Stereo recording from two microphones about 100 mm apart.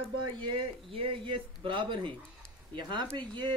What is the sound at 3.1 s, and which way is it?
Speech, 50° right (ahead or behind).